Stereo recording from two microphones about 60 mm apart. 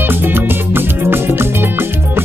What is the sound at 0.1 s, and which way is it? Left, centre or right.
Music, right.